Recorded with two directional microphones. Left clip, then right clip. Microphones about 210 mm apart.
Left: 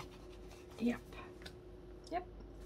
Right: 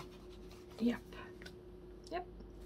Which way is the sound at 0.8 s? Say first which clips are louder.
Right 1 dB; 20° right (ahead or behind).